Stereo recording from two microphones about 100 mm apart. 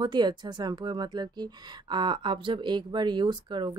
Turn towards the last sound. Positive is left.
turn(degrees=-50)  # may be behind; listen again after turning